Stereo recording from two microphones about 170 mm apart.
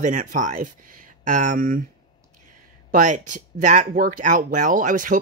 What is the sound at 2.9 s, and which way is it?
Speech, 50° right (ahead or behind).